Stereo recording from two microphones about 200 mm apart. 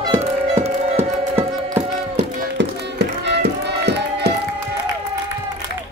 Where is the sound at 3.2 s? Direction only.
55° right (ahead or behind).